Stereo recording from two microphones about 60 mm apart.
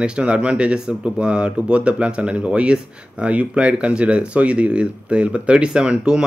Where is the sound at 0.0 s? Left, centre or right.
Centre.